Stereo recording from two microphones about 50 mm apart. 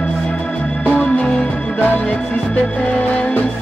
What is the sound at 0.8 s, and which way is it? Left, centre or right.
Music, left.